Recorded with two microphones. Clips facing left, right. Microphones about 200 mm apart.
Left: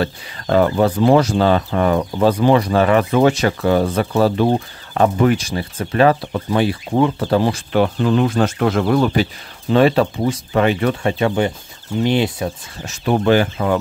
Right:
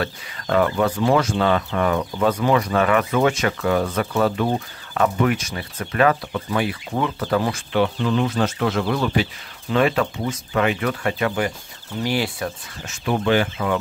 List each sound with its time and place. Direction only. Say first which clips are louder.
0.0 s speech: left 5 dB; 30° left (ahead or behind)
7.7 s speech: left 4 dB; 45° left (ahead or behind); by 12.5 s 25° left (ahead or behind)
12.8 s speech: left 5 dB; 40° left (ahead or behind)